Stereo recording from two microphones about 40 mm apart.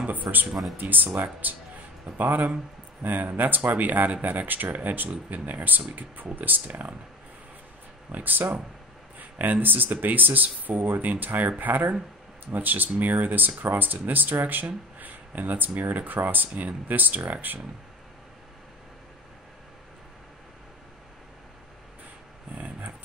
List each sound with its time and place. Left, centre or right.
0.0 s speech: right
8.1 s speech: right
22.6 s roaring cats: right